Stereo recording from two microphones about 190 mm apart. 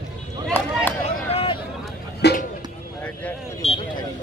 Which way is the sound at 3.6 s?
30° left (ahead or behind).